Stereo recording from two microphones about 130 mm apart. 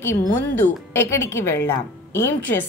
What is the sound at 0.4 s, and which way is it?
A woman's voice, 15° left (ahead or behind).